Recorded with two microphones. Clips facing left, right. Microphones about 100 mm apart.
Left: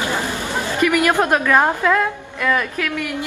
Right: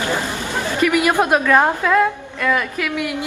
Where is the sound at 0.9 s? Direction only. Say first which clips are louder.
Right 1 dB; 15° right (ahead or behind).